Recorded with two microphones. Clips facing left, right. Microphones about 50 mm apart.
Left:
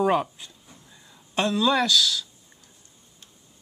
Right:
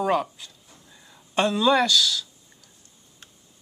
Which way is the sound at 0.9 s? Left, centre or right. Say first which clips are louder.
Right 3 dB; centre.